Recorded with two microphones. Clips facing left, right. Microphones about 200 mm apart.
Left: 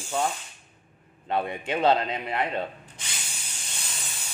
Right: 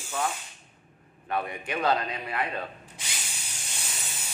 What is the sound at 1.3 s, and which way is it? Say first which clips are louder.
A man's voice: left 3 dB; 25° left (ahead or behind).